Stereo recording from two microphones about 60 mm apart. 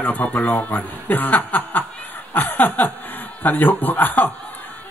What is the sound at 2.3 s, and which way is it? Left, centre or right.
Chuckle, left.